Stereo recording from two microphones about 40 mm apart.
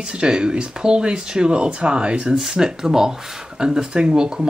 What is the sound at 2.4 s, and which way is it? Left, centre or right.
Speech, centre.